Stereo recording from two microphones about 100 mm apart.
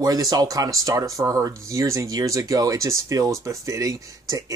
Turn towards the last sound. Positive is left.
turn(degrees=-35)  # may be behind; listen again after turning